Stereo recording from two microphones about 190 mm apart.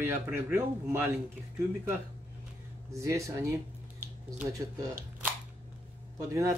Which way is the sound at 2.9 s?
15° right (ahead or behind).